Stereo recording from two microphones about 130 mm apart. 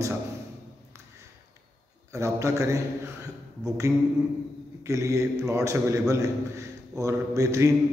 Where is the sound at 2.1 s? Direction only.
25° right (ahead or behind).